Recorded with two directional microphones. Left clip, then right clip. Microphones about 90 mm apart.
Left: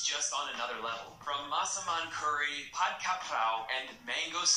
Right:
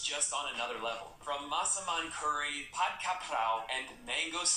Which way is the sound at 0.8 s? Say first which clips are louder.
Even; 25° right (ahead or behind).